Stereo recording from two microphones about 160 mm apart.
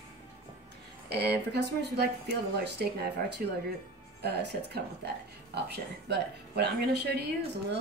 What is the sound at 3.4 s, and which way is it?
Speech, 65° right (ahead or behind).